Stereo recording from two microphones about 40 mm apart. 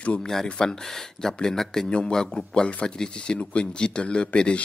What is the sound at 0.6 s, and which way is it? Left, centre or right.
Speech, centre.